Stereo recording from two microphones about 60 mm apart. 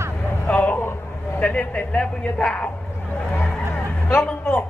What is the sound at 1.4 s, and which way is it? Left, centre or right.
A woman's voice, left.